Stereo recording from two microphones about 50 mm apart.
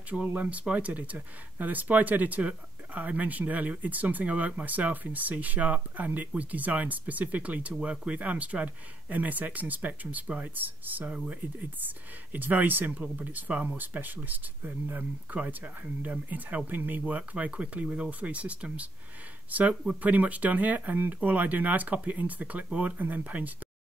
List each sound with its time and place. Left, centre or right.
0.3 s speech: right
11.1 s speech: right
11.8 s speech: right
20.0 s speech: right